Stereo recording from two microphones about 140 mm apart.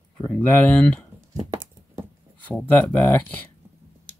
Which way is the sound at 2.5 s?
10° left (ahead or behind).